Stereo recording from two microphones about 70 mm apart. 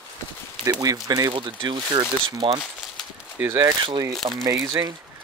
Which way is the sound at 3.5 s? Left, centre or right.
Right.